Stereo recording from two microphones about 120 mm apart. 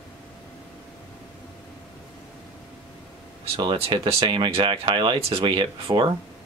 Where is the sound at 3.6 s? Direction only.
50° right (ahead or behind).